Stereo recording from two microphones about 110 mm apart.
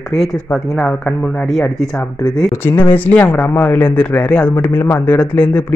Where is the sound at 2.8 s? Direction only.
15° left (ahead or behind).